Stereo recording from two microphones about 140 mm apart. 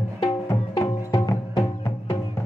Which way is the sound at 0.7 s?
30° left (ahead or behind).